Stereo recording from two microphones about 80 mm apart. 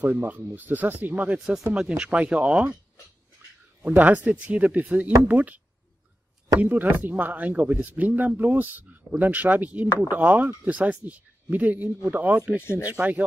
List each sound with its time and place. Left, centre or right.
0.0 s speech: centre
3.8 s speech: centre
6.6 s speech: right
12.5 s speech: left